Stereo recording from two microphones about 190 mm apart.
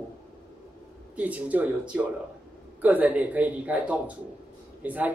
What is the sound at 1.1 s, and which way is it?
Speech, 5° right (ahead or behind).